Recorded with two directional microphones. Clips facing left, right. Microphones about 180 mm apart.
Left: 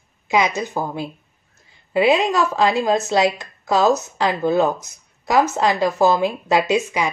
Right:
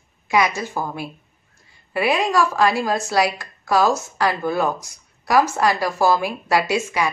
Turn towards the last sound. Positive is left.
turn(degrees=20)  # may be behind; listen again after turning